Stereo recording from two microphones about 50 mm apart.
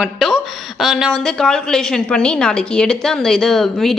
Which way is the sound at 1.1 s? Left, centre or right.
Centre.